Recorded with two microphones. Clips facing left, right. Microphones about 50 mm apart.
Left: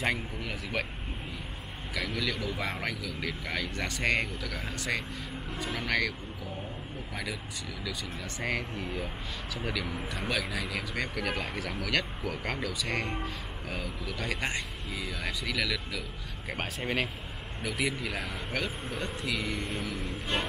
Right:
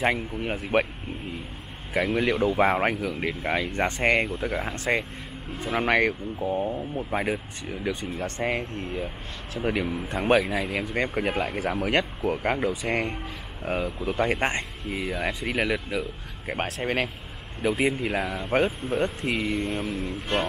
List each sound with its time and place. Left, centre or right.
0.0 s speech: right
2.0 s speech: right
19.5 s a sound: centre